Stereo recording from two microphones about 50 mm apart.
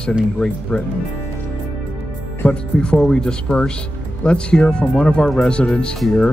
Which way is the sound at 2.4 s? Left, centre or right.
Centre.